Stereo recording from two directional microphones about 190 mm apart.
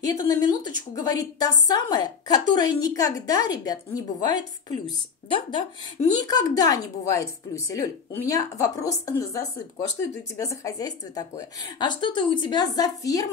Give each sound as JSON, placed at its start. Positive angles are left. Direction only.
{"t": 0.0, "sound": "a woman's voice", "side_deg": 20}